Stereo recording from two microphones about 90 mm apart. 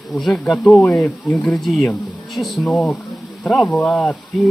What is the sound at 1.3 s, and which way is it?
Speech, 5° left (ahead or behind).